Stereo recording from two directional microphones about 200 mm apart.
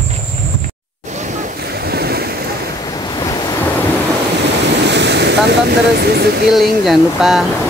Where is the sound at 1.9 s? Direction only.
50° right (ahead or behind).